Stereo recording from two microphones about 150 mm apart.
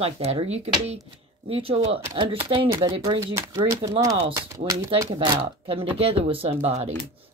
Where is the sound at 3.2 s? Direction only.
20° right (ahead or behind); by 6.8 s 45° right (ahead or behind).